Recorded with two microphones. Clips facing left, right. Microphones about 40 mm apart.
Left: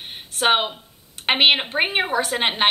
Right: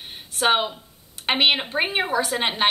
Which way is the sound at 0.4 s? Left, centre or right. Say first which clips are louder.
Left 1 dB; left.